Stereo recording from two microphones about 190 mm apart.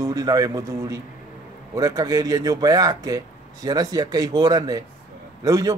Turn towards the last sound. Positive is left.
turn(degrees=-20)  # may be behind; listen again after turning